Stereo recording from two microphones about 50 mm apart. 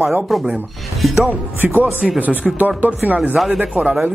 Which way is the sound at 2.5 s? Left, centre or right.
Right.